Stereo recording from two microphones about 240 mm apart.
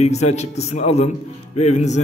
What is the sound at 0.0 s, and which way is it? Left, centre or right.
A man's voice, left.